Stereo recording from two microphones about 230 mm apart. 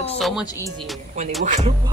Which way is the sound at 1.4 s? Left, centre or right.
Right.